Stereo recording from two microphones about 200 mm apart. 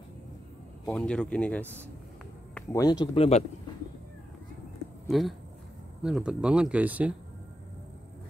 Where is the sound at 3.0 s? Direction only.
30° left (ahead or behind).